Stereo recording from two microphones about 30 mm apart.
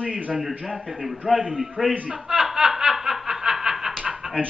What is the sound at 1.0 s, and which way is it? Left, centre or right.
Speech, centre.